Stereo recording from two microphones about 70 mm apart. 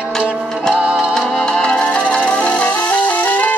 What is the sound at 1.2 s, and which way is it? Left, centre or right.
Music, centre.